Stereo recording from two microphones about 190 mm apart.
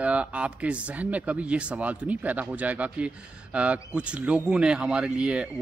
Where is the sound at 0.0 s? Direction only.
5° right (ahead or behind).